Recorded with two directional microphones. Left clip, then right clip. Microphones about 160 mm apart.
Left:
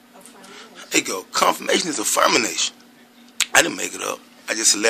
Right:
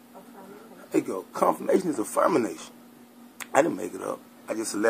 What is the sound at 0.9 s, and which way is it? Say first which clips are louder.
Speech: left 5 dB; 15° left (ahead or behind).